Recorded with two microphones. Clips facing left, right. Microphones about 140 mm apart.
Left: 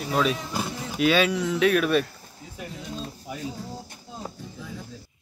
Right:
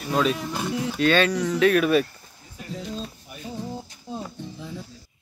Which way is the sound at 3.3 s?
90° left.